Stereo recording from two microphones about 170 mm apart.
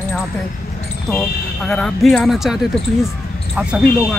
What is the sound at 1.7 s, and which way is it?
Speech, 5° left (ahead or behind).